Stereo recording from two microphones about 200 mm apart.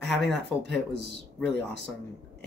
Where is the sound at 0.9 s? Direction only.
55° right (ahead or behind).